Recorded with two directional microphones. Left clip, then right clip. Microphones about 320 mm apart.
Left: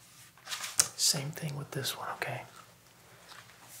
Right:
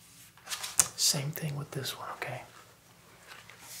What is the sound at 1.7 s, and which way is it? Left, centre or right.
Speech, centre.